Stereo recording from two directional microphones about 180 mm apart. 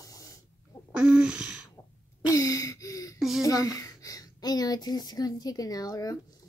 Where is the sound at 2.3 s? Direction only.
20° left (ahead or behind).